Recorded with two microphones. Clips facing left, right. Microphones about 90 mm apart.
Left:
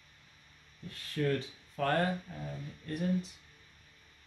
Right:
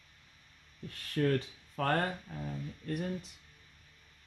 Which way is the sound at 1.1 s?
50° right (ahead or behind).